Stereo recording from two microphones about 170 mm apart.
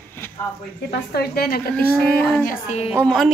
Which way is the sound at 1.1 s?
65° left (ahead or behind).